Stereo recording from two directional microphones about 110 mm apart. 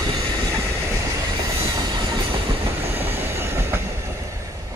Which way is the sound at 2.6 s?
20° right (ahead or behind).